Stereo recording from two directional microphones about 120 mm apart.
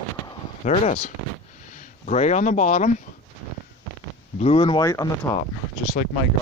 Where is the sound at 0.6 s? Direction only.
70° left (ahead or behind).